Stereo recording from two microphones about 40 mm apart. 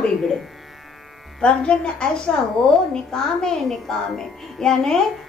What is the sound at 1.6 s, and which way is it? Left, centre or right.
A woman's voice, left.